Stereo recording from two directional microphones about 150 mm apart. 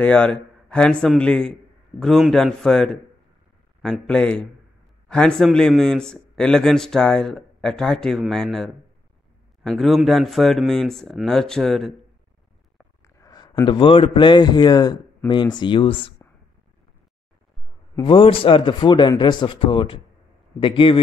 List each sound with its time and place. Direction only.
0.0 s a man's voice: 10° left (ahead or behind)
13.0 s a sound: 25° left (ahead or behind)
13.7 s speech: 35° left (ahead or behind)
18.0 s speech: 35° left (ahead or behind)